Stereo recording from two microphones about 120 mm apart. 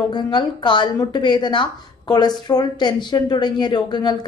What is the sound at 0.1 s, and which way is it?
Speech, 40° left (ahead or behind).